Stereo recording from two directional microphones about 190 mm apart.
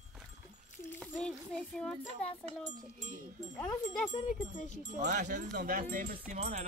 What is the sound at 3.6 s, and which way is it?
Speech, 15° left (ahead or behind).